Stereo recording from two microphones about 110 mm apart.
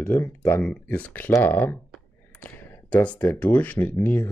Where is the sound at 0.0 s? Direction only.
15° left (ahead or behind).